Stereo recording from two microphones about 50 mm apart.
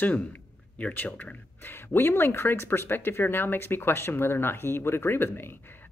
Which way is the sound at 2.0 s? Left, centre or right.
Left.